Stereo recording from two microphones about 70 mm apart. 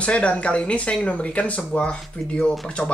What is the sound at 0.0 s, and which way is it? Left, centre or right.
Speech, centre.